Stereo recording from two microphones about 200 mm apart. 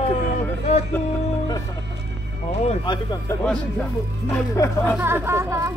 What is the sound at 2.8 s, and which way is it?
Speech, 20° left (ahead or behind).